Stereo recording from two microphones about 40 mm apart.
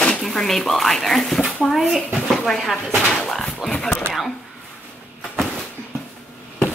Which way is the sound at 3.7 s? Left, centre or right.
Left.